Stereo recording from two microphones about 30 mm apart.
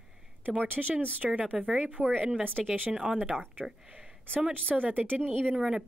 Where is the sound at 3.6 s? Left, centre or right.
Centre.